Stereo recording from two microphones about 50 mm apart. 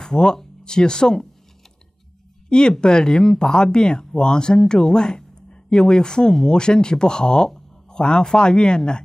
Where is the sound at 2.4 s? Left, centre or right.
Centre.